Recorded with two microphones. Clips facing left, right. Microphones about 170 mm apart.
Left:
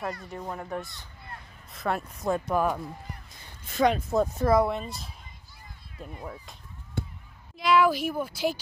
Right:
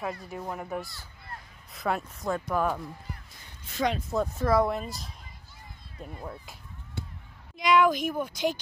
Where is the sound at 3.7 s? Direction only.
55° left (ahead or behind).